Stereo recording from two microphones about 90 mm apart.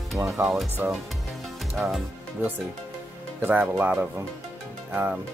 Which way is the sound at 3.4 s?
20° right (ahead or behind).